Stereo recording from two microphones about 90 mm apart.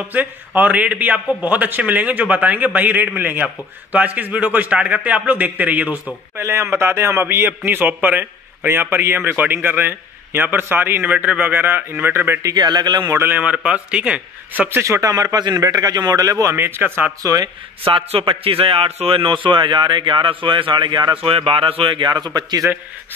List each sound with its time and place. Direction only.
0.6 s a man's voice: 15° right (ahead or behind)
12.4 s speech: 50° right (ahead or behind)
13.1 s a man's voice: 25° right (ahead or behind)
13.4 s a man's voice: 15° right (ahead or behind)
14.8 s speech: 35° right (ahead or behind)
16.5 s a man's voice: 25° right (ahead or behind)
17.2 s speech: 40° right (ahead or behind)
17.8 s a man's voice: 80° right; by 22.6 s 50° right (ahead or behind)